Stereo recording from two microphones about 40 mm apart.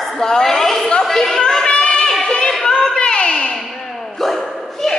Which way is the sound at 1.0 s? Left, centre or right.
Centre.